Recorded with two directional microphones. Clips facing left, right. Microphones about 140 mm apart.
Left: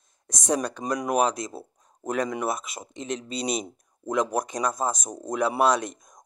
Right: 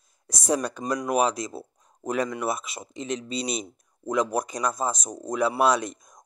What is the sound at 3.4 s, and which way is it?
Speech, 45° left (ahead or behind).